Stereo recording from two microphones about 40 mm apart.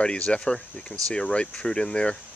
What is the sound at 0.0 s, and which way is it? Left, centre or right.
Speech, left.